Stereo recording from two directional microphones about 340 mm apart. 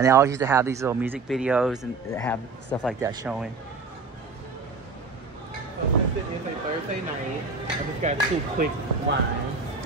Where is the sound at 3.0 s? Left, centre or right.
Centre.